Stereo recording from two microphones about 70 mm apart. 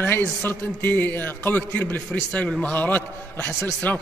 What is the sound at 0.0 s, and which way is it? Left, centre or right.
A man's voice, left.